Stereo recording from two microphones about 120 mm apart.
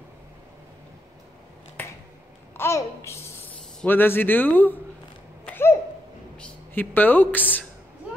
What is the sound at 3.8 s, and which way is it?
Speech, 15° left (ahead or behind).